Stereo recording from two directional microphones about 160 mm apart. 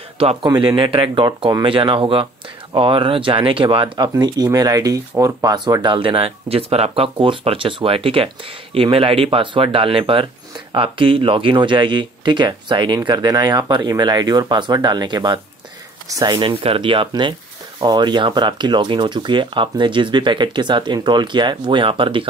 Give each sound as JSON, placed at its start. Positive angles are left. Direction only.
{"t": 0.2, "sound": "speech", "side_deg": -30}